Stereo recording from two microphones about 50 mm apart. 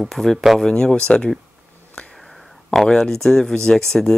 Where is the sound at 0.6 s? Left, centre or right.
Centre.